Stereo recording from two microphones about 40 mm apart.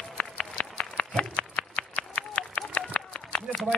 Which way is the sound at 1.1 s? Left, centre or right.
Left.